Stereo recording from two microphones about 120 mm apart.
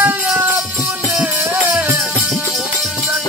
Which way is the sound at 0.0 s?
10° right (ahead or behind).